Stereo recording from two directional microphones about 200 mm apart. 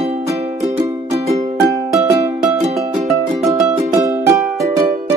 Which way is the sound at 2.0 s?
15° right (ahead or behind).